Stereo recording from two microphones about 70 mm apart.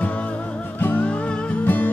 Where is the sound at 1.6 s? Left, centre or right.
Left.